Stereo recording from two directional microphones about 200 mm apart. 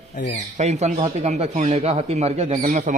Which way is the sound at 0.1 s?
40° left (ahead or behind).